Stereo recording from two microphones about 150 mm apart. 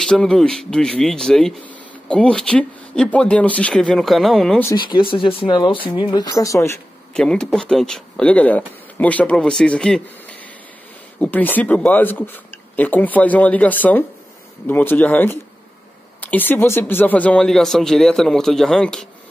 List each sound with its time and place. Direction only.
0.0 s speech: 5° left (ahead or behind)
4.7 s speech: 30° left (ahead or behind)
7.2 s speech: 5° left (ahead or behind)